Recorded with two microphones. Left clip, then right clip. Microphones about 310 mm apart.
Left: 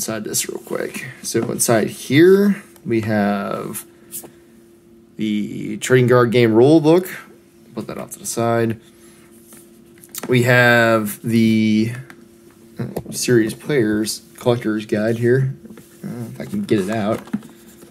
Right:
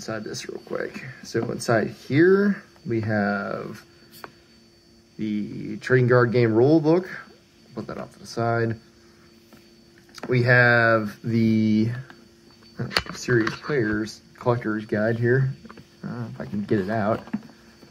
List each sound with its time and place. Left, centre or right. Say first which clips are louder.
0.0 s speech: left 7 dB; centre
5.2 s speech: left 6 dB; centre
10.1 s speech: left 4 dB; centre